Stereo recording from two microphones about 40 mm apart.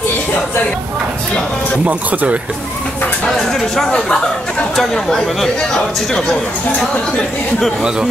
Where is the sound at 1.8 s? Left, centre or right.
Right.